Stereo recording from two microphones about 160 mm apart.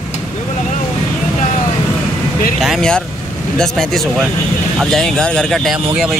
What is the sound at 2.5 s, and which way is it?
Speech, centre (ahead or behind).